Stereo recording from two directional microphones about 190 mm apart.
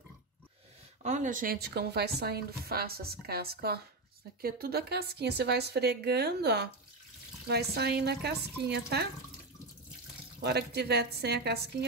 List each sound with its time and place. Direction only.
1.0 s speech: 40° right (ahead or behind); by 9.1 s 60° right (ahead or behind)
10.4 s speech: 60° right (ahead or behind)